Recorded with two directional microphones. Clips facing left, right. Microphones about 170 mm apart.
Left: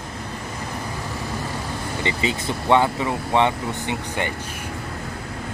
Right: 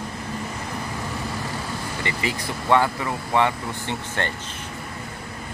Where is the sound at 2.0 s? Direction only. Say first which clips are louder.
Left 4 dB; 20° left (ahead or behind).